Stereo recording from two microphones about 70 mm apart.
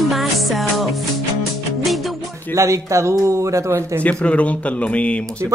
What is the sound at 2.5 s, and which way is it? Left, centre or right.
A man's voice, right.